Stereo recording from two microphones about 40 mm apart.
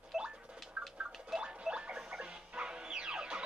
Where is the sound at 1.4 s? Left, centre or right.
Right.